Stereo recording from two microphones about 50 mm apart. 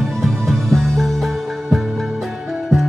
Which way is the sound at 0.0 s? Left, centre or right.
Centre.